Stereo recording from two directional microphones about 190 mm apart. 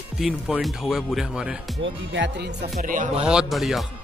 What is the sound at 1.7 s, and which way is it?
Music, 70° right (ahead or behind).